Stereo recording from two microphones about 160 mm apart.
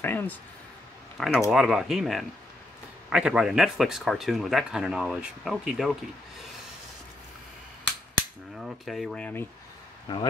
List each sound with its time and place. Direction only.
0.0 s speech: 15° left (ahead or behind)
1.1 s speech: centre (ahead or behind)
8.5 s speech: centre (ahead or behind)
10.1 s speech: 30° left (ahead or behind)